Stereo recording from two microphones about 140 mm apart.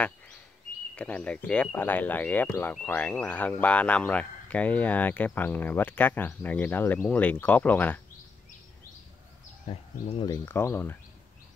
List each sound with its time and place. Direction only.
0.9 s speech: 10° left (ahead or behind)
9.7 s speech: 45° left (ahead or behind)
10.4 s speech: 15° left (ahead or behind)